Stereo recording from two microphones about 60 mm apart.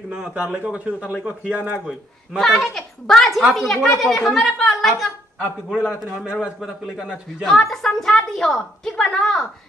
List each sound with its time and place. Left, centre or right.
0.1 s a man's voice: centre
2.3 s a woman's voice: centre
6.4 s a man's voice: centre
7.4 s a woman's voice: centre